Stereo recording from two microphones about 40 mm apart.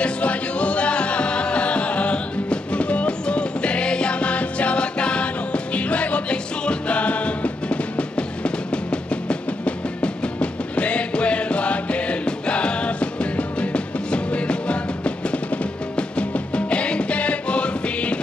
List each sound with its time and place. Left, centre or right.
0.0 s music: left